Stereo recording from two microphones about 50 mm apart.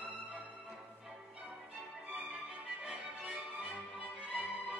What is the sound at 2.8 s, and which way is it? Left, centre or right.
Music, right.